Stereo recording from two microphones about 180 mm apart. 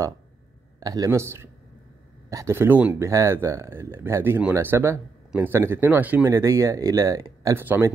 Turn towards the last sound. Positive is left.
turn(degrees=-10)  # may be behind; listen again after turning